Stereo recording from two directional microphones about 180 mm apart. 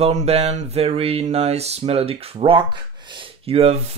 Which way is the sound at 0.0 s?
35° right (ahead or behind).